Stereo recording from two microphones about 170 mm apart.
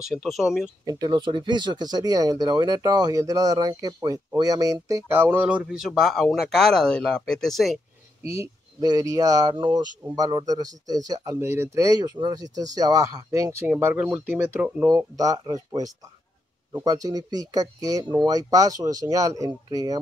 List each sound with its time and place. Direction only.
0.0 s speech: centre (ahead or behind)
0.8 s speech: 25° right (ahead or behind); by 7.8 s centre (ahead or behind)
8.3 s speech: 20° right (ahead or behind)
14.9 s speech: 20° right (ahead or behind)